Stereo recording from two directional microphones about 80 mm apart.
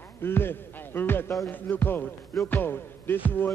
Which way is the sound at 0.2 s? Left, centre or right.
Left.